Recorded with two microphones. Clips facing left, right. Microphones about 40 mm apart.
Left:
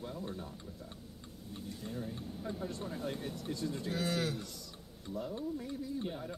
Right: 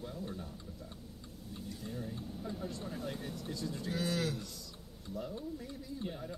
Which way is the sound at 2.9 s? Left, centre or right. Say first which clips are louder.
Left 2 dB; centre.